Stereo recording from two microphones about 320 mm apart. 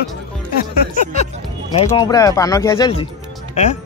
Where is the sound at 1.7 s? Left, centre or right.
Centre.